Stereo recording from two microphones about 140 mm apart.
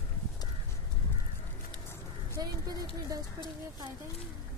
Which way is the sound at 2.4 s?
30° right (ahead or behind).